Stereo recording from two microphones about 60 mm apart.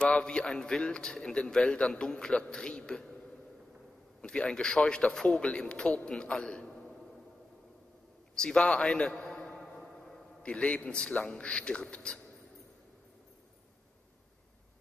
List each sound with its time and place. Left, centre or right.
0.0 s a man's voice: centre
4.2 s a man's voice: centre
8.4 s a man's voice: centre
8.9 s music: centre
10.4 s a man's voice: centre